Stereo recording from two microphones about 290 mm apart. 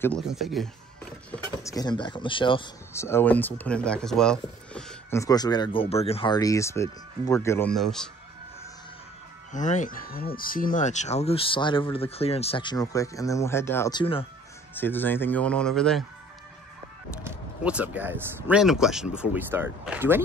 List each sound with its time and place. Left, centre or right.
0.0 s speech: centre
1.3 s speech: centre
9.5 s speech: left; by 16.0 s centre
17.2 s speech: centre